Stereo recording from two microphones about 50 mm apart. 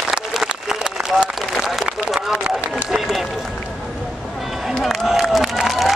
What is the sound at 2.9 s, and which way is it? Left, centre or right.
Run, centre.